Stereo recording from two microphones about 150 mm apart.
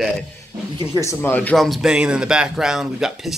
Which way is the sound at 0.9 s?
15° left (ahead or behind).